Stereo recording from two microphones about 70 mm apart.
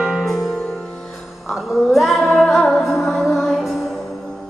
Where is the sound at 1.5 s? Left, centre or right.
Centre.